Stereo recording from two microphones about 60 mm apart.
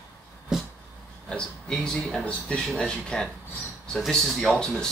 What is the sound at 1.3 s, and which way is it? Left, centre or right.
A man's voice, centre.